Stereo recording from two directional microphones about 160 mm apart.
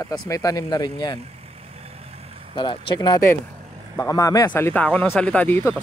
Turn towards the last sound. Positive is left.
turn(degrees=15)  # may be behind; listen again after turning